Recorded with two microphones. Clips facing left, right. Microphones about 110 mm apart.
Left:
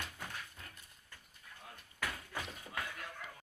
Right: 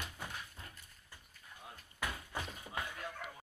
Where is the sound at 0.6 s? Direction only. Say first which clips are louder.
Right 1 dB; 25° right (ahead or behind).